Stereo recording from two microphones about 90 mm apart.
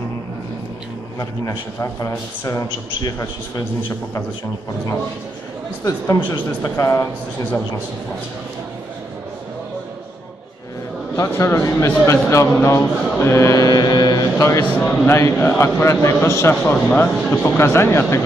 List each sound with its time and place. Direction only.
1.4 s mantra: 35° left (ahead or behind)
5.9 s mantra: 30° left (ahead or behind)
11.2 s speech: 30° left (ahead or behind)
12.1 s mantra: 35° left (ahead or behind)
14.4 s mantra: 35° left (ahead or behind)
15.3 s speech: 20° left (ahead or behind)
15.6 s mantra: 35° left (ahead or behind)
16.3 s speech: 30° left (ahead or behind)
16.7 s speech: 20° left (ahead or behind)
17.6 s speech: 30° left (ahead or behind)